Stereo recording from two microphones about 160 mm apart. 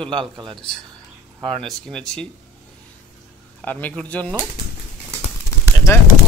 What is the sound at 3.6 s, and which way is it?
Speech, 10° left (ahead or behind).